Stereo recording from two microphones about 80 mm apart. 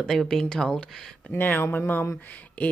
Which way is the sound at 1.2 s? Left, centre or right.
Left.